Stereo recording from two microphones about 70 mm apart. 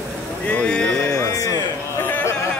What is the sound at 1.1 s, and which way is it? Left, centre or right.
Music, left.